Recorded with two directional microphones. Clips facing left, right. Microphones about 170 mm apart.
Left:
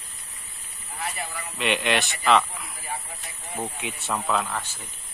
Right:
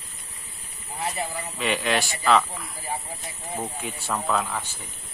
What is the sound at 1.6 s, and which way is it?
A man's voice, centre (ahead or behind).